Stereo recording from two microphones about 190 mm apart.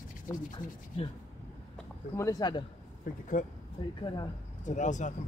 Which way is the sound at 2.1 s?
20° left (ahead or behind).